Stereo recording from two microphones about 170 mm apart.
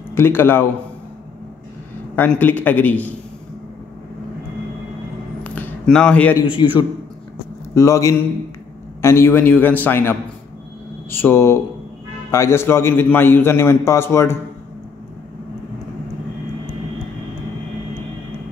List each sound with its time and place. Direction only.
0.1 s a man's voice: 15° left (ahead or behind)
2.1 s a man's voice: 10° left (ahead or behind)
5.4 s a sound: 10° left (ahead or behind)
6.4 s a man's voice: 30° left (ahead or behind)
7.7 s a man's voice: 15° left (ahead or behind)